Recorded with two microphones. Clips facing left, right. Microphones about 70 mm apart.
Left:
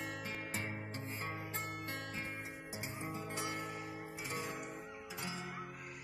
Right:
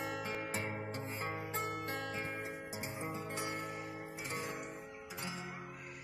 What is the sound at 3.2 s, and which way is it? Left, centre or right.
Music, right.